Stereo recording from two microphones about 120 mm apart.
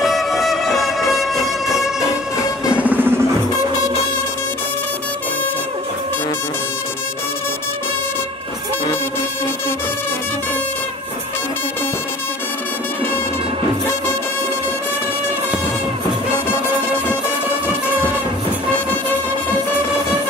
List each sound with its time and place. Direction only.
0.0 s music: centre (ahead or behind)
2.7 s music: 15° right (ahead or behind)